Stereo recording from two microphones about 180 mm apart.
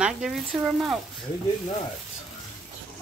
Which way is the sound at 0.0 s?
5° right (ahead or behind).